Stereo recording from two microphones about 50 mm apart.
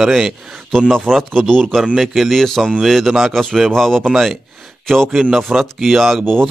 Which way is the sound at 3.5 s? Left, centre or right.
Centre.